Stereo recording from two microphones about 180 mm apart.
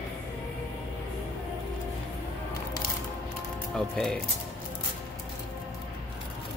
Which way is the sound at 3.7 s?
Centre (ahead or behind).